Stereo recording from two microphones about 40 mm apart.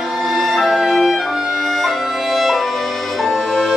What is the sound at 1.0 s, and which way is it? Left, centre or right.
Music, centre.